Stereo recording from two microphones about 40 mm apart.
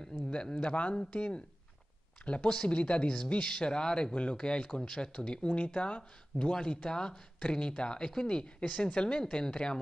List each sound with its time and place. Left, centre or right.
0.0 s speech: left